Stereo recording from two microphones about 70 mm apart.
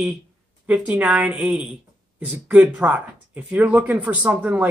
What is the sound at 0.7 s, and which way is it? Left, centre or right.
Speech, right.